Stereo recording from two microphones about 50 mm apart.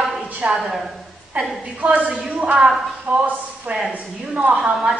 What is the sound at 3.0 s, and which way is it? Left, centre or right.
Speech, right.